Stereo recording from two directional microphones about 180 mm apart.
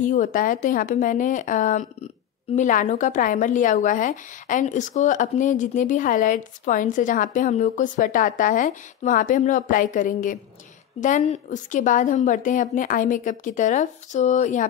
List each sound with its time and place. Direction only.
0.0 s speech: 45° left (ahead or behind)